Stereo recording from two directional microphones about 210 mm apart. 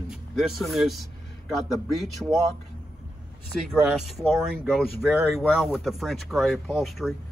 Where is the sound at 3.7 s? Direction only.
5° right (ahead or behind).